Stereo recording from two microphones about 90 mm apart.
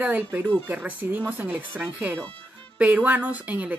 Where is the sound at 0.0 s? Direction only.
20° right (ahead or behind).